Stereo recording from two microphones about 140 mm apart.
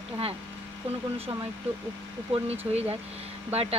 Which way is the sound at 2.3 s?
45° right (ahead or behind).